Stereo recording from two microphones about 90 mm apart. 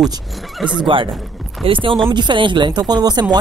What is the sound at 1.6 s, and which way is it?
Speech, 75° right (ahead or behind).